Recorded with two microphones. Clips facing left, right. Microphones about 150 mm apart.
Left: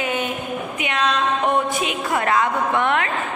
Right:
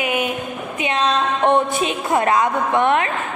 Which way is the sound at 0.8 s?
25° right (ahead or behind).